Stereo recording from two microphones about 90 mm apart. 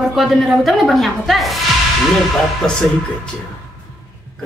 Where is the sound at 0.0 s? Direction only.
Centre (ahead or behind).